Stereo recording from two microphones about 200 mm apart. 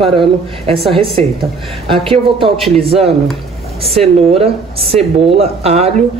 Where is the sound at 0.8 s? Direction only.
Centre (ahead or behind).